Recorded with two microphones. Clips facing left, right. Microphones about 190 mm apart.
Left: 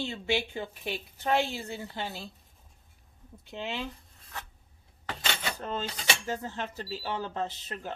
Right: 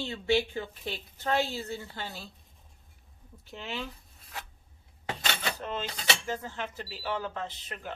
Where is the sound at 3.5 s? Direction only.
20° left (ahead or behind).